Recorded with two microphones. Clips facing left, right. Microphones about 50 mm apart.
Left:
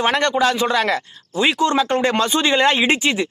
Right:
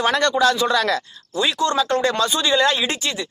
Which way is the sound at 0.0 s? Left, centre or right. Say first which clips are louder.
Even; left.